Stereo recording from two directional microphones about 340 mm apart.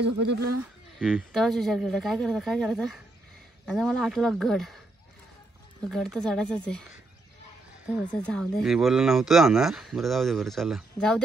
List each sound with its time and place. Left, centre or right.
0.0 s speech: right
0.9 s speech: centre
5.9 s speech: centre
8.1 s speech: centre